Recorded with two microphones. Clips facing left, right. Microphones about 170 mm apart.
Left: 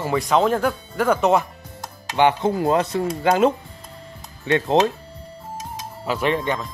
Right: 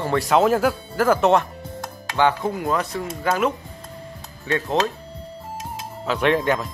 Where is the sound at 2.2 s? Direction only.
20° left (ahead or behind).